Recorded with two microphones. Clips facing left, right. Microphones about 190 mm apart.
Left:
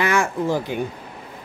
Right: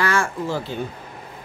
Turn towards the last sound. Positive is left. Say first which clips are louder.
# left 4 dB
turn(degrees=15)  # may be behind; listen again after turning